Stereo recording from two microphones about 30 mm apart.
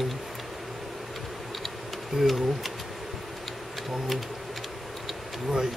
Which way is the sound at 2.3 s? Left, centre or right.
Centre.